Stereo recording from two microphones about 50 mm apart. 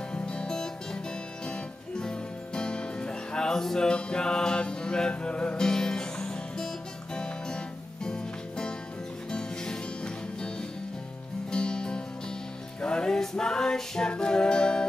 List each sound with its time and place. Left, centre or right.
0.1 s music: left